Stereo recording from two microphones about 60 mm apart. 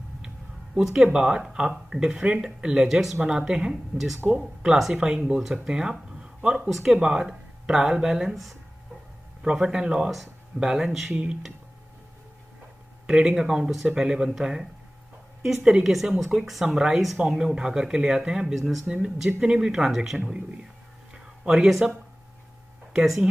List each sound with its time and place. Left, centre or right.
0.7 s speech: centre
9.4 s speech: centre
13.0 s a woman's voice: centre
18.9 s speech: centre
21.1 s a sound: centre